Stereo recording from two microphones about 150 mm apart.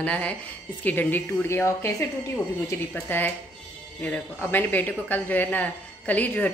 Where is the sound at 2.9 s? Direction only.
10° left (ahead or behind).